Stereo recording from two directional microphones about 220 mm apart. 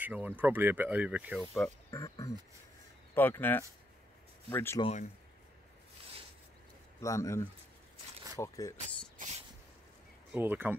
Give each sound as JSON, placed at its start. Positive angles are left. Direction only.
{"t": 0.0, "sound": "speech", "side_deg": -10}
{"t": 1.4, "sound": "speech", "side_deg": 10}
{"t": 4.8, "sound": "speech", "side_deg": 30}
{"t": 7.0, "sound": "speech", "side_deg": 15}
{"t": 10.3, "sound": "speech", "side_deg": -10}